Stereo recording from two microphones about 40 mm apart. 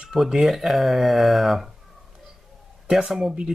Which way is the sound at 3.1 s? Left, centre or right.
Centre.